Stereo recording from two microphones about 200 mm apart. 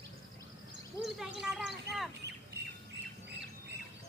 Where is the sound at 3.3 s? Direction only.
55° right (ahead or behind).